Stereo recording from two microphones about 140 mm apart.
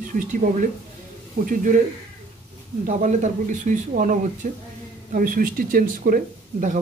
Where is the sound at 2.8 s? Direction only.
65° right (ahead or behind).